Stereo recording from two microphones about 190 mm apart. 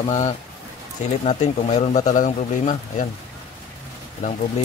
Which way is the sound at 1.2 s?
35° left (ahead or behind).